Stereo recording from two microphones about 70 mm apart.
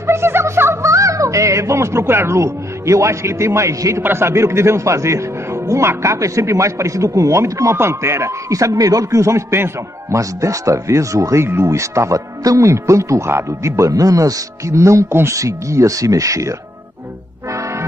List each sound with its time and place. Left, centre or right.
0.0 s music: right
4.0 s speech: right
17.5 s music: right